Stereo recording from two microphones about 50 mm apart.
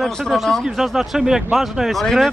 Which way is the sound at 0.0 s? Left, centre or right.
Centre.